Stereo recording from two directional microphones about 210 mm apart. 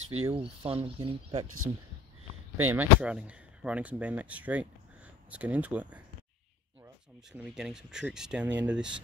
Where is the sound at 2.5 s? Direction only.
10° right (ahead or behind).